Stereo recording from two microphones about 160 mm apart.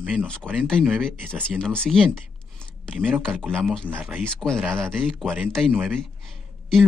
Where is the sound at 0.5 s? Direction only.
5° left (ahead or behind).